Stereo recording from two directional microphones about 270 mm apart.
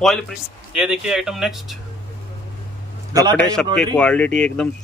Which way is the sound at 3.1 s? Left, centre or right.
Centre.